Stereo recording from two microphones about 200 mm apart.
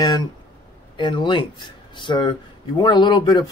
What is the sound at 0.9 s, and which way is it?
Speech, 25° left (ahead or behind).